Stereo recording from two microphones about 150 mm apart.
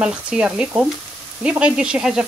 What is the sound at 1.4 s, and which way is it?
Speech, 5° right (ahead or behind).